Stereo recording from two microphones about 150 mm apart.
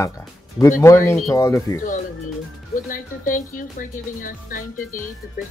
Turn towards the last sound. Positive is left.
turn(degrees=65)  # may be behind; listen again after turning